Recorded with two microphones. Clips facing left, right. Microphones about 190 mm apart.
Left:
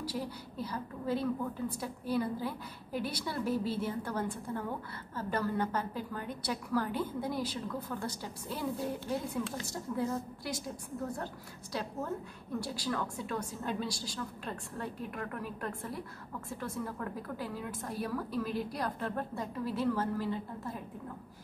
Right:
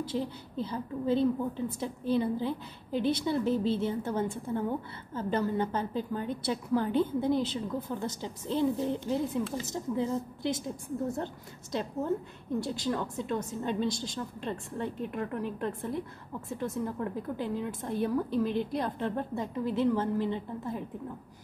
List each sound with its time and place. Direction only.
0.0 s a woman's voice: 25° right (ahead or behind)
11.7 s a woman's voice: 20° right (ahead or behind)